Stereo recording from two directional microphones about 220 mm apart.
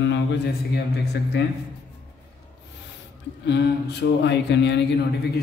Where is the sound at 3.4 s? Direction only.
50° left (ahead or behind).